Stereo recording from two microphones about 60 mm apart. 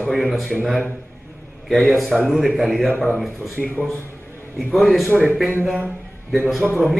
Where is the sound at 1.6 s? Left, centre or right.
Centre.